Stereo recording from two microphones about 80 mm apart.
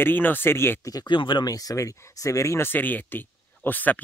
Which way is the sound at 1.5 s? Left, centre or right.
Left.